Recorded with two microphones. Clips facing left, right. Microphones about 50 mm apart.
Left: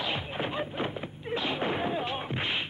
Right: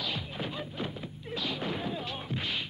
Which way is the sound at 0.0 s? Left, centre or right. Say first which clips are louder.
Left 4 dB; left.